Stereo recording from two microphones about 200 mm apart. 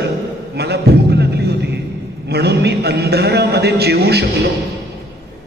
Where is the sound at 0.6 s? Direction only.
55° right (ahead or behind).